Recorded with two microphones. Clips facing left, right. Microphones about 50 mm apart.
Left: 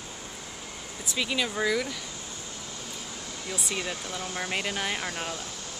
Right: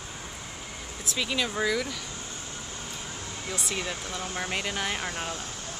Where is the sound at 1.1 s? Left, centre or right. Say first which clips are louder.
Even; centre.